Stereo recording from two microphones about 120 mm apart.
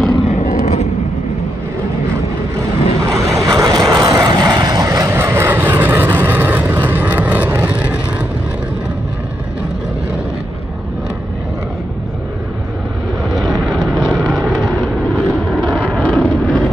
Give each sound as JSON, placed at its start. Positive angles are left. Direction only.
{"t": 0.3, "sound": "vehicle", "side_deg": 90}
{"t": 3.1, "sound": "vehicle", "side_deg": -25}
{"t": 13.3, "sound": "vehicle", "side_deg": 0}